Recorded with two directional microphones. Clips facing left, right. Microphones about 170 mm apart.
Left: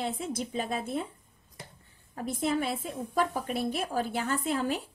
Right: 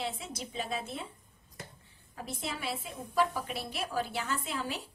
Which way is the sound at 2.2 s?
50° left (ahead or behind).